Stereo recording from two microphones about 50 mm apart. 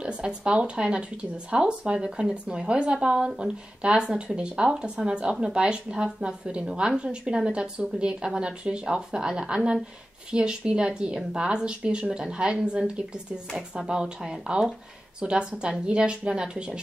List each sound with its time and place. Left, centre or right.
0.0 s a woman's voice: centre